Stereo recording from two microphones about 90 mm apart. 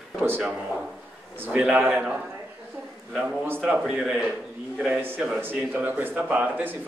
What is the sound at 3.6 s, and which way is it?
Speech, 10° right (ahead or behind).